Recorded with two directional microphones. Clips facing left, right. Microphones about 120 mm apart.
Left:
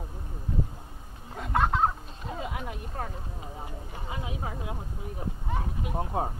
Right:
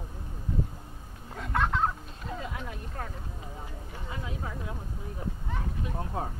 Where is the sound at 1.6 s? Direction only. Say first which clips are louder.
Left 3 dB; 30° left (ahead or behind).